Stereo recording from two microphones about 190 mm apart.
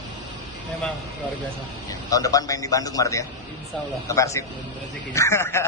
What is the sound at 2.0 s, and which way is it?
Speech, 20° left (ahead or behind).